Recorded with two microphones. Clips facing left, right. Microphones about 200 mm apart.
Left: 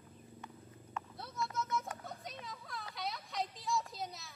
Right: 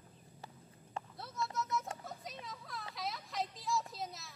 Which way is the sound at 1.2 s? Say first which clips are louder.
Even; centre (ahead or behind).